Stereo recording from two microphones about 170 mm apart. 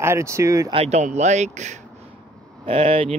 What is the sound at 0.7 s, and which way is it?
Speech, 40° right (ahead or behind).